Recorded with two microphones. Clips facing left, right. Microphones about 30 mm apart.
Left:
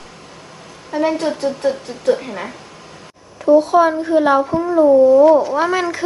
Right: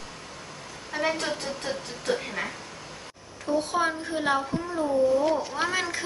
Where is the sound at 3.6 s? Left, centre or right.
Centre.